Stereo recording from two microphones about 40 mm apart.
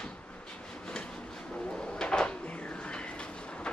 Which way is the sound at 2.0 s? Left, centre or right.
Left.